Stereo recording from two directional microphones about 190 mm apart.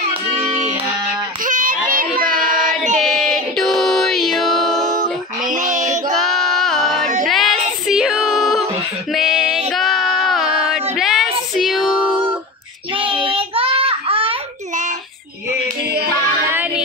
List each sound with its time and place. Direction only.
1.4 s a sound: 45° right (ahead or behind)
1.9 s child singing: 50° right (ahead or behind)
3.1 s music: centre (ahead or behind)
5.5 s a sound: 40° right (ahead or behind)
6.2 s female singing: centre (ahead or behind)
9.7 s child singing: centre (ahead or behind)
13.2 s child singing: 30° right (ahead or behind)
16.4 s music: 10° right (ahead or behind)